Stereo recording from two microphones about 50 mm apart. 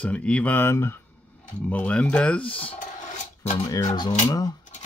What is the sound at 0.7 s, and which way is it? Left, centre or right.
Speech, left.